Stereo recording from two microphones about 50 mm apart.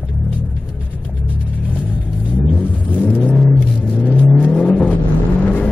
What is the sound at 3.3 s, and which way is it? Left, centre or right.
Car, centre.